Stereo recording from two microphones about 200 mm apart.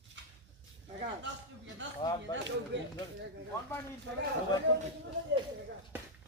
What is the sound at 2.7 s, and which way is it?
Speech, 65° right (ahead or behind).